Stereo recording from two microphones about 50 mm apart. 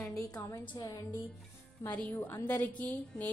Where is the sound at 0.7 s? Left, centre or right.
Left.